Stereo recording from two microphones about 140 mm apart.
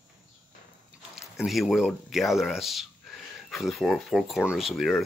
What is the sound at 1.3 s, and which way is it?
Speech, centre (ahead or behind).